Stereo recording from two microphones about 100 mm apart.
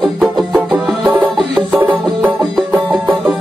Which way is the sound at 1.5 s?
15° right (ahead or behind).